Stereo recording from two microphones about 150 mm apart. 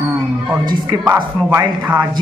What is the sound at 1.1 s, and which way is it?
Speech, 20° right (ahead or behind).